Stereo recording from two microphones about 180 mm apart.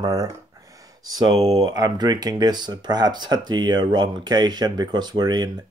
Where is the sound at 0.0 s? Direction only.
20° right (ahead or behind).